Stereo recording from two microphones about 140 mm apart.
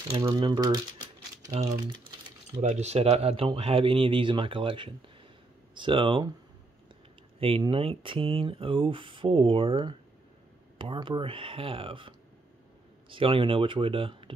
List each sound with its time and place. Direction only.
0.2 s speech: 35° right (ahead or behind)
2.6 s speech: 50° right (ahead or behind); by 6.3 s 35° right (ahead or behind)
7.3 s speech: 40° right (ahead or behind)
13.1 s speech: 40° right (ahead or behind)